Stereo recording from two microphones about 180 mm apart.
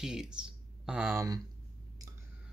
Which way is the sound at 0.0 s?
5° right (ahead or behind).